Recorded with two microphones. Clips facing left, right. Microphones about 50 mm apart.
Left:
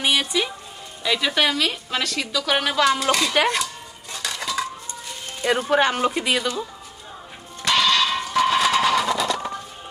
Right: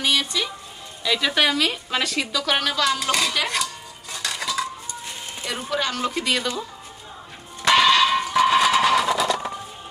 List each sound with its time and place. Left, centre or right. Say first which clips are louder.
0.0 s music: left 2 dB; centre
1.0 s a woman's voice: even; centre
2.6 s speech: left 3 dB; centre
3.0 s a woman's voice: left 2 dB; centre
3.4 s cutlery: left 3 dB; centre
5.7 s speech: left 4 dB; left; by 6.4 s centre
7.6 s music: right 3 dB; centre